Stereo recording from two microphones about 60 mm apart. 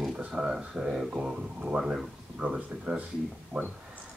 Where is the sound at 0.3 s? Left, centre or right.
Centre.